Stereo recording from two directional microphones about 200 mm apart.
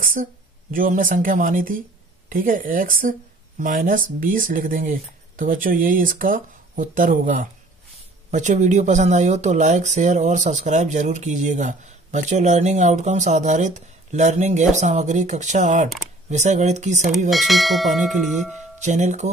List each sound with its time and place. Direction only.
0.0 s speech: 45° right (ahead or behind)
17.3 s bell: centre (ahead or behind)
18.8 s speech: 35° right (ahead or behind)